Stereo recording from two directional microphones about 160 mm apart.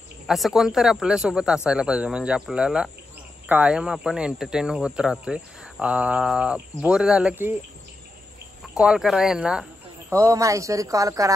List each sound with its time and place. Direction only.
0.3 s speech: 5° right (ahead or behind)
8.7 s speech: 5° right (ahead or behind)
10.1 s speech: 20° right (ahead or behind)